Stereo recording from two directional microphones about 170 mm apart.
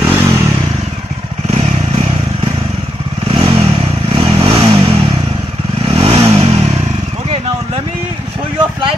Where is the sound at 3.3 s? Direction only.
30° right (ahead or behind).